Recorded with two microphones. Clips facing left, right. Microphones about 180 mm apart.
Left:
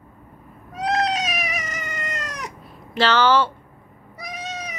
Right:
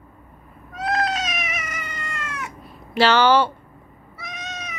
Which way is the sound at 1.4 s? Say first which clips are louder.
Left 2 dB; 40° left (ahead or behind).